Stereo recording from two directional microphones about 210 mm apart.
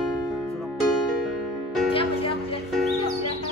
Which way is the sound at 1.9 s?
25° left (ahead or behind).